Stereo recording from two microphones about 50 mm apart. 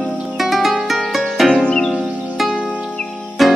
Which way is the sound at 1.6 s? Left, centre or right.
Centre.